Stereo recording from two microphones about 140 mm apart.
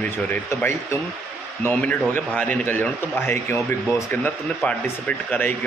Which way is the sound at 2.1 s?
10° left (ahead or behind).